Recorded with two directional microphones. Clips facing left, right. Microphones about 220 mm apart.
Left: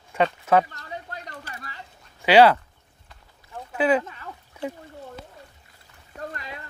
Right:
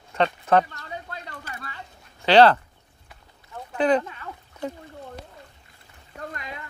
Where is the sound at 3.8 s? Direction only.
5° left (ahead or behind).